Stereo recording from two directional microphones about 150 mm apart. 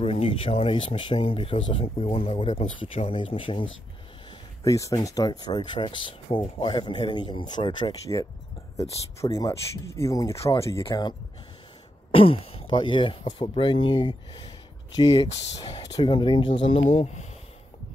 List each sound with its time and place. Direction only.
0.0 s speech: 40° left (ahead or behind)
4.6 s speech: 20° left (ahead or behind)
9.2 s speech: 20° left (ahead or behind)
12.1 s speech: 40° left (ahead or behind)
15.8 s speech: 30° left (ahead or behind); by 17.3 s 50° left (ahead or behind)